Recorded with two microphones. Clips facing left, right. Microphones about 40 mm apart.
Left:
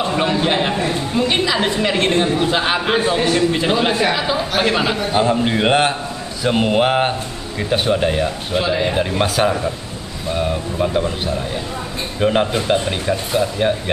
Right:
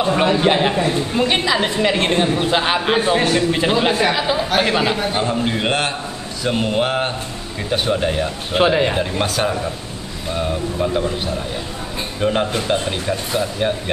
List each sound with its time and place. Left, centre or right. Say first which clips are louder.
0.1 s a man's voice: right 4 dB; centre
8.5 s speech: right 3 dB; right
8.9 s speech: left 2 dB; centre
12.2 s speech: left 2 dB; centre